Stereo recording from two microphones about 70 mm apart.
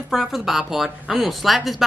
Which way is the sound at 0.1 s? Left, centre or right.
Centre.